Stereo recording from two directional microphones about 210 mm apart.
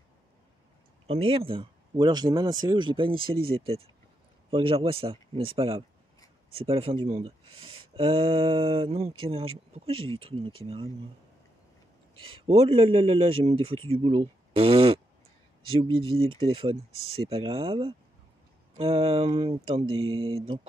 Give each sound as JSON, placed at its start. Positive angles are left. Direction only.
{"t": 1.0, "sound": "speech", "side_deg": -25}
{"t": 12.4, "sound": "speech", "side_deg": -30}